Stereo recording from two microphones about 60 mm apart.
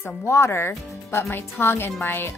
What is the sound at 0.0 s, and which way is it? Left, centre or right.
Speech, left.